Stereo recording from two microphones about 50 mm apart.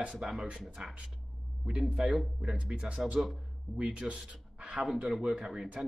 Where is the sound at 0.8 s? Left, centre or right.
Right.